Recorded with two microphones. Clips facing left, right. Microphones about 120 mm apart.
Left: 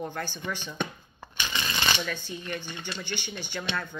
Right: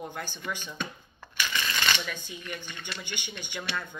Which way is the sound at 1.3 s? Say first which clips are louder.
Even; 25° left (ahead or behind).